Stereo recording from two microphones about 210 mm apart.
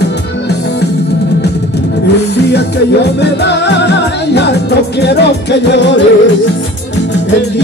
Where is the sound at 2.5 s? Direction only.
55° left (ahead or behind).